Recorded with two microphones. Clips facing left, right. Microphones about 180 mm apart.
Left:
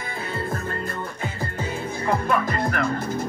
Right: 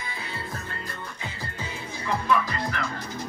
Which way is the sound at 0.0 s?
50° left (ahead or behind).